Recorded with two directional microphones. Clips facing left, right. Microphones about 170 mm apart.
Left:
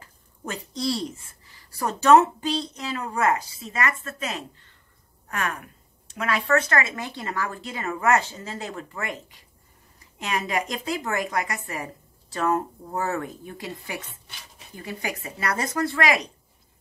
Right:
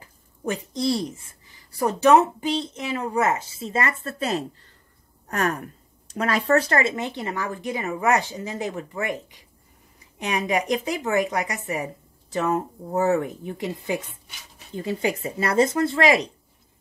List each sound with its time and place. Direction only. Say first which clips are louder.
0.0 s a sound: right 8 dB; 20° right (ahead or behind)
1.8 s speech: even; 20° right (ahead or behind)
10.3 s a woman's voice: right 4 dB; 15° right (ahead or behind)